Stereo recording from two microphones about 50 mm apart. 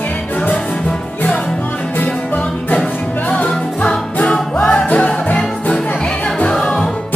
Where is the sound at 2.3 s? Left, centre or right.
Left.